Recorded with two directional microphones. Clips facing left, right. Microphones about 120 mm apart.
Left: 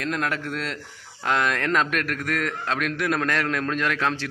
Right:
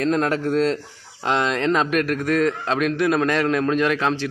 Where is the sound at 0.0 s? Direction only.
35° right (ahead or behind).